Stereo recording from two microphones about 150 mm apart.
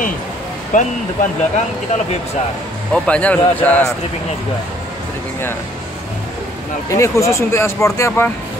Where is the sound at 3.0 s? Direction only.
10° left (ahead or behind).